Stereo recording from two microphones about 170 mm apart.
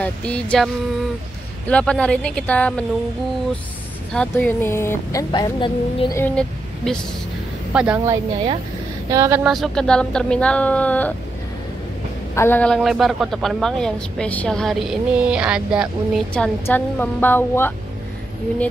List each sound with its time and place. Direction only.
0.0 s a woman's voice: 5° left (ahead or behind)
1.7 s speech: 5° left (ahead or behind)
4.1 s speech: 5° left (ahead or behind); by 6.0 s 25° left (ahead or behind)
6.1 s a woman's voice: 10° left (ahead or behind)
7.7 s speech: 5° right (ahead or behind)
8.0 s speech: 25° right (ahead or behind)
9.4 s a woman's voice: centre (ahead or behind)
12.4 s a woman's voice: 10° left (ahead or behind); by 16.2 s 5° right (ahead or behind)
16.3 s speech: 10° left (ahead or behind)